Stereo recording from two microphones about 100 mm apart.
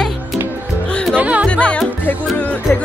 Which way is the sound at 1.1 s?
15° right (ahead or behind).